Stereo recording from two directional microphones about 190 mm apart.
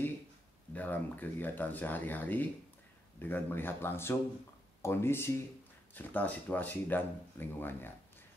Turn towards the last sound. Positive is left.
turn(degrees=10)  # may be behind; listen again after turning